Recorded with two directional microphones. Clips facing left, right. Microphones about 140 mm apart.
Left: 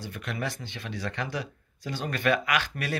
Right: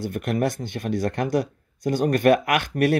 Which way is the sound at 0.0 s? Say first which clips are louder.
Right 10 dB; 50° right (ahead or behind).